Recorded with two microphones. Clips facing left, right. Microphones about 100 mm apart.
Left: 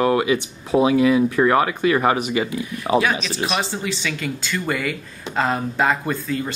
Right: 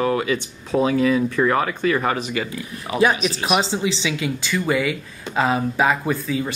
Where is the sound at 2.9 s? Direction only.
25° left (ahead or behind).